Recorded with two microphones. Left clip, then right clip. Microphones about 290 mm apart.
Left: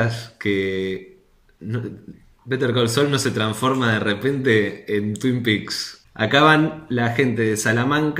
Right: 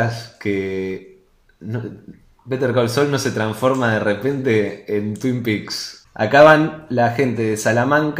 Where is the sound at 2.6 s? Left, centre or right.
Left.